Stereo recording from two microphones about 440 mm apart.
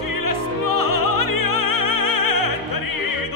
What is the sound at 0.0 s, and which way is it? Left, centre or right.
Opera, left.